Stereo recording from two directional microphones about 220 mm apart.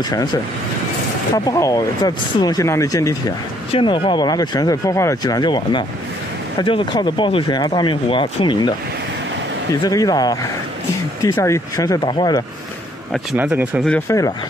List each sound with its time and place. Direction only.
0.1 s speech: 20° left (ahead or behind)
9.8 s speech: 15° left (ahead or behind)
13.1 s speech: 5° right (ahead or behind)
13.8 s speech: 10° left (ahead or behind)